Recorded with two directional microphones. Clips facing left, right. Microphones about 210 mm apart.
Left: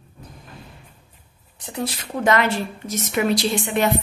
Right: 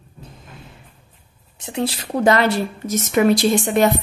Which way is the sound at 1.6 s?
25° right (ahead or behind).